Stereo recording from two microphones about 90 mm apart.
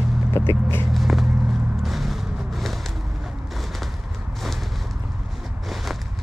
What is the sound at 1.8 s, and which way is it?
Music, centre (ahead or behind).